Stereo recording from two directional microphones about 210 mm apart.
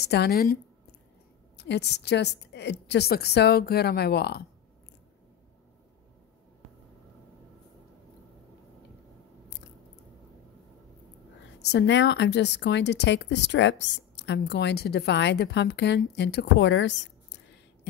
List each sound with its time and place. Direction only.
0.0 s a woman's voice: 50° left (ahead or behind)
1.6 s a woman's voice: 55° left (ahead or behind)
11.6 s a woman's voice: 55° left (ahead or behind)